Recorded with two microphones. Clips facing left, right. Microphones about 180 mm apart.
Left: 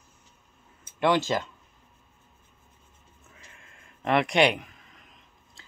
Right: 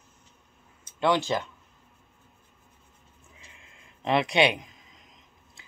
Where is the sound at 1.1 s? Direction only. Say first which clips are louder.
Left 1 dB; 20° right (ahead or behind).